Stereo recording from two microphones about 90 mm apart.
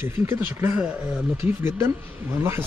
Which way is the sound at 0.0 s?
25° right (ahead or behind).